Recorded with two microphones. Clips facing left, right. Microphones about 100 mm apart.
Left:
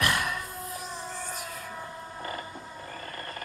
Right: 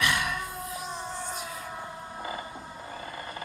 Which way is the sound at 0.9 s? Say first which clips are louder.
Right 2 dB; 25° right (ahead or behind).